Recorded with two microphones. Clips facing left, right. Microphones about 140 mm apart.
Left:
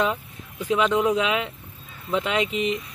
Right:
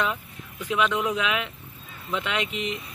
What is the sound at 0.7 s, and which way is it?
Speech, 35° left (ahead or behind).